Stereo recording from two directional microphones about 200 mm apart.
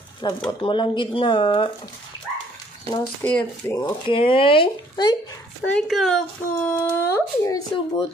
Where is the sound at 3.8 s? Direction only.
25° left (ahead or behind).